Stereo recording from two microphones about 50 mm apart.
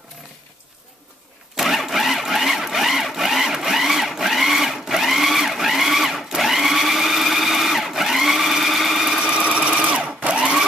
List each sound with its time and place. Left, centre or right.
1.6 s vehicle: centre
9.2 s sewing machine: right